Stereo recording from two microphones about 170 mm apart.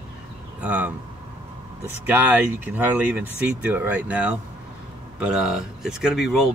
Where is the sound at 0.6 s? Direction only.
10° right (ahead or behind).